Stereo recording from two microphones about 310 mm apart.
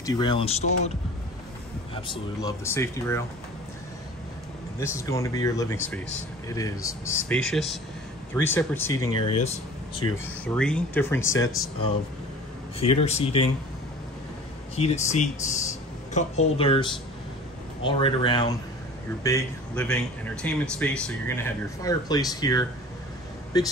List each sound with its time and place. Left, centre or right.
0.0 s speech: centre
2.0 s speech: centre
4.7 s speech: centre
12.9 s speech: centre
14.8 s speech: left